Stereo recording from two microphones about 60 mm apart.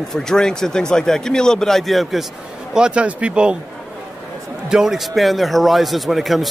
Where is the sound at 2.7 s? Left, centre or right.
Centre.